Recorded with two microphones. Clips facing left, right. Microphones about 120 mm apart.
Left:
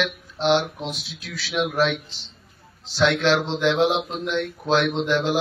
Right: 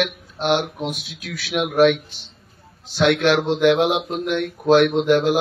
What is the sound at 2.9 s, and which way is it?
Speech, 55° right (ahead or behind).